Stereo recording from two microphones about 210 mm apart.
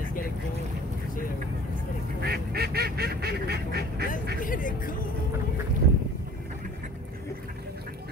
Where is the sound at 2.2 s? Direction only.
50° right (ahead or behind).